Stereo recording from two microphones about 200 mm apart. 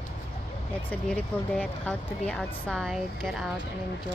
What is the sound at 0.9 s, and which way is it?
Speech, 10° left (ahead or behind).